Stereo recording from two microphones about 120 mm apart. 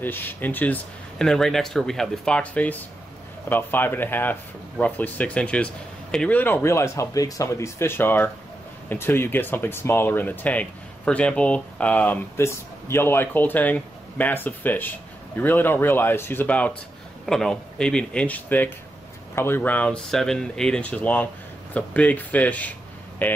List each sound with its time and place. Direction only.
0.0 s speech: 15° left (ahead or behind)